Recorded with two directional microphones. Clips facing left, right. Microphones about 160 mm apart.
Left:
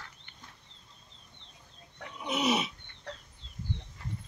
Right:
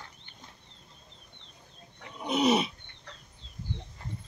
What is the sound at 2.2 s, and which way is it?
Roaring cats, 35° right (ahead or behind).